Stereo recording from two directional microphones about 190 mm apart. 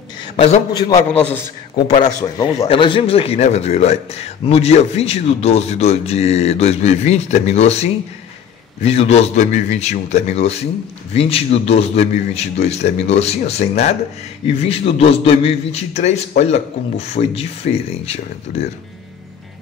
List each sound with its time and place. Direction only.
0.7 s a man's voice: 20° left (ahead or behind)
1.9 s speech: 35° left (ahead or behind)
2.3 s speech: 25° left (ahead or behind)